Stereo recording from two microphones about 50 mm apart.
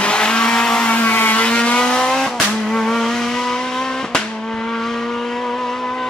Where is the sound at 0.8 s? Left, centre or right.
Left.